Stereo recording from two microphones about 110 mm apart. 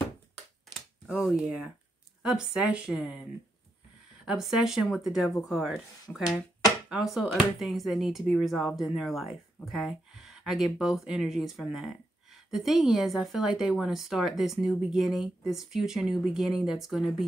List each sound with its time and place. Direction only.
1.1 s speech: 5° right (ahead or behind)
4.3 s speech: 5° right (ahead or behind)
6.1 s speech: 20° left (ahead or behind)
6.9 s speech: 5° right (ahead or behind)